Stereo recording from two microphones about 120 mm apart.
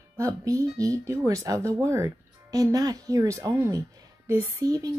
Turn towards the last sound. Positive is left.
turn(degrees=-30)  # may be behind; listen again after turning